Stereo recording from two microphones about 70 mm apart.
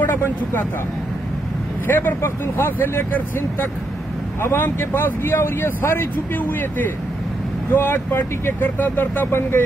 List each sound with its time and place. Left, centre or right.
0.0 s speech: left
1.9 s speech: left
7.7 s speech: left